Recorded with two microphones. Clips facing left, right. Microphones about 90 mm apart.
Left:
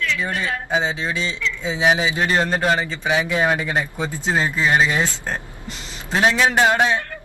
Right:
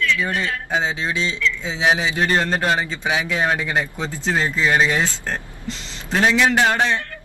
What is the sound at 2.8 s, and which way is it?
Speech, 15° right (ahead or behind).